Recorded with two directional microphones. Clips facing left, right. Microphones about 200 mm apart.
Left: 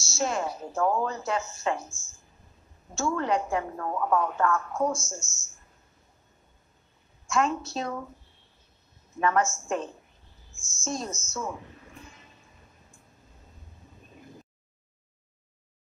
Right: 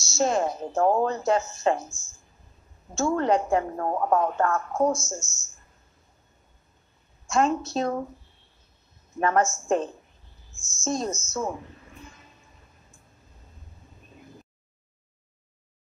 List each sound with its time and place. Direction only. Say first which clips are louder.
0.2 s a woman's voice: right 5 dB; 40° right (ahead or behind)
2.9 s a woman's voice: right 4 dB; 35° right (ahead or behind)
4.9 s speech: right 4 dB; 20° right (ahead or behind)
7.2 s a woman's voice: right 3 dB; 40° right (ahead or behind)
9.2 s a woman's voice: right 2 dB; 35° right (ahead or behind)